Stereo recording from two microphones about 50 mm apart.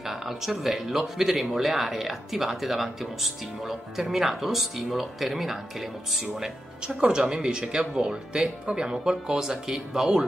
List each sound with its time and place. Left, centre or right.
0.0 s speech: centre
7.0 s speech: centre